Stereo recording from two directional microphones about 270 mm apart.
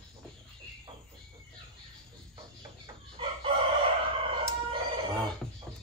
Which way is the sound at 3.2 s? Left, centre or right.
Centre.